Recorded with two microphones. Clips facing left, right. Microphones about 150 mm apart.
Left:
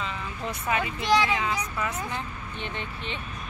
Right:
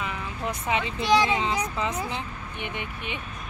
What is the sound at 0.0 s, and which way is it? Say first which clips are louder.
Speech: right 2 dB; 20° right (ahead or behind).